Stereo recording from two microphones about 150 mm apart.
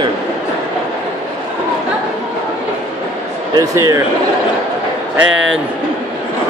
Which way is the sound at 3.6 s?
20° right (ahead or behind).